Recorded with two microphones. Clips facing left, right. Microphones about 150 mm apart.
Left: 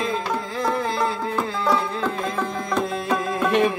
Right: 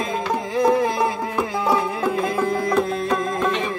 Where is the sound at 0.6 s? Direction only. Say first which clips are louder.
Right 5 dB; 15° right (ahead or behind).